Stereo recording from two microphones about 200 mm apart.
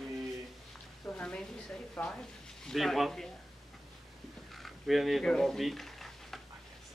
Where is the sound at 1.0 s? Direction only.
5° left (ahead or behind).